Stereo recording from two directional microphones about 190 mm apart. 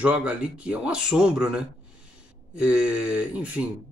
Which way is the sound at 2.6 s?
5° right (ahead or behind).